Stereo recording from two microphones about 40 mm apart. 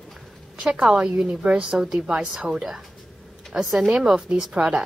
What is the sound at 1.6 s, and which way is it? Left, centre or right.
Speech, centre.